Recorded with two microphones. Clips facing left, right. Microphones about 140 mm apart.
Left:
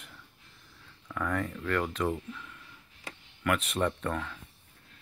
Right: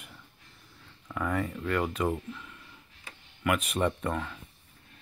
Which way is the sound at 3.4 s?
10° right (ahead or behind).